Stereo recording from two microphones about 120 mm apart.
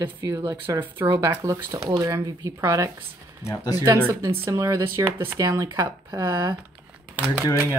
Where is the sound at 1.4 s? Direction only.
30° right (ahead or behind).